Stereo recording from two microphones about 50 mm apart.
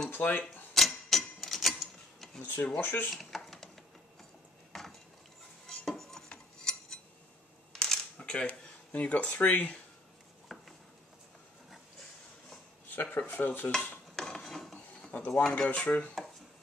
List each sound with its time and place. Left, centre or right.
0.1 s a sound: left
0.7 s a sound: centre
2.4 s speech: left
3.1 s a sound: centre
5.9 s stir: centre
6.3 s cutlery: centre
7.7 s camera: centre
8.9 s speech: left
9.4 s speech: left
10.5 s a sound: centre
12.9 s speech: left
14.1 s mechanisms: centre
15.1 s speech: left
15.5 s speech: left